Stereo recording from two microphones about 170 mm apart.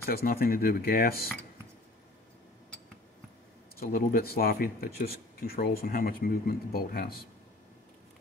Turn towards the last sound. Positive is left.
turn(degrees=60)  # may be behind; listen again after turning